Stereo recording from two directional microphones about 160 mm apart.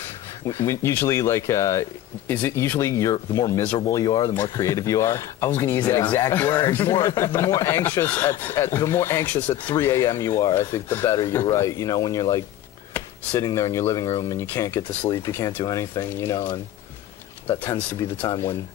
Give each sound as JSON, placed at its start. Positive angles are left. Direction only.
{"t": 0.0, "sound": "speech", "side_deg": 15}